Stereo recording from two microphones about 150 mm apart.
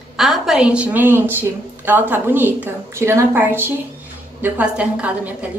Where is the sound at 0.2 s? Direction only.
5° right (ahead or behind).